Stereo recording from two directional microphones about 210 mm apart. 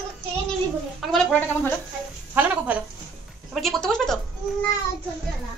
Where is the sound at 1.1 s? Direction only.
5° left (ahead or behind).